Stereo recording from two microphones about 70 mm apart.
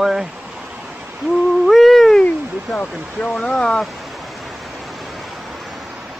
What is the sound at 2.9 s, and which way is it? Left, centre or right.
Speech, centre.